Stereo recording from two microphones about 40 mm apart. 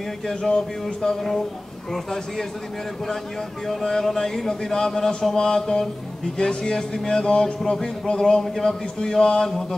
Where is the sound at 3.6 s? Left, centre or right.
Centre.